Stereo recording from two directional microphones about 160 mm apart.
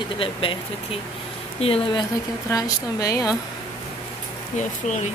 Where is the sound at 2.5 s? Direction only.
20° left (ahead or behind).